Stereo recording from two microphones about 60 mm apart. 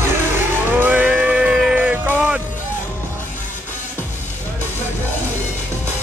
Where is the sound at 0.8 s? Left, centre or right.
Right.